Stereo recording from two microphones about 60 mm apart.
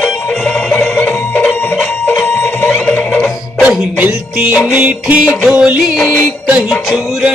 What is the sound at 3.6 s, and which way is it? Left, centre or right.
Music, right.